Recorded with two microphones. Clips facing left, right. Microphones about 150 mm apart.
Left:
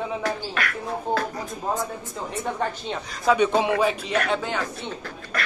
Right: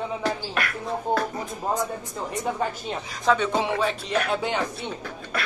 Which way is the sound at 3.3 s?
20° left (ahead or behind).